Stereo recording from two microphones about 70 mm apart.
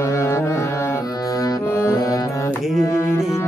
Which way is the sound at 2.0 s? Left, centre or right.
Left.